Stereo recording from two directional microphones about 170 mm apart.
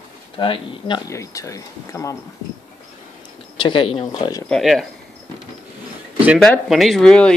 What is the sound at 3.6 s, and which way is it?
Speech, 30° left (ahead or behind).